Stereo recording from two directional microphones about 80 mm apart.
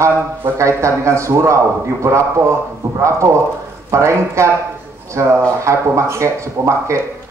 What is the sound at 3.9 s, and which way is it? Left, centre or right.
Speech, right.